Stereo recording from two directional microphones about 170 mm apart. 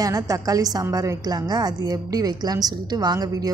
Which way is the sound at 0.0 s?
20° right (ahead or behind).